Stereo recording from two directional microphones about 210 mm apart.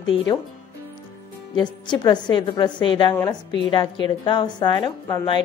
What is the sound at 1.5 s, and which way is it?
A woman's voice, 20° left (ahead or behind).